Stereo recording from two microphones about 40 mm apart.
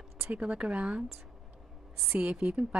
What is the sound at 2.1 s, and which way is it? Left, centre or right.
Speech, right.